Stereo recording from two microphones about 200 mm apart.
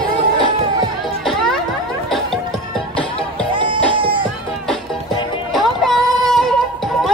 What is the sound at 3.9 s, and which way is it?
Music, 25° right (ahead or behind).